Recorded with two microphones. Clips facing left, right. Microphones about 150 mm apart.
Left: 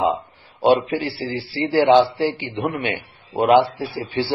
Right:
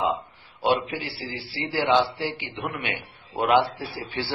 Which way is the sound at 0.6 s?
35° left (ahead or behind).